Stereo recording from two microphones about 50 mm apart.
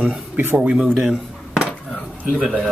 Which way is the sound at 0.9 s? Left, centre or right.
Centre.